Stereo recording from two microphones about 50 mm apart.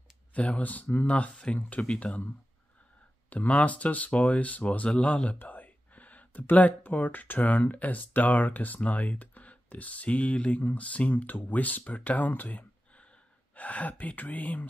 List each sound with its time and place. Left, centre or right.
0.3 s speech: left
3.3 s speech: left